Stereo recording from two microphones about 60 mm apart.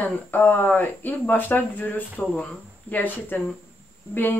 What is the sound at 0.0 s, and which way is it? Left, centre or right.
A woman's voice, left.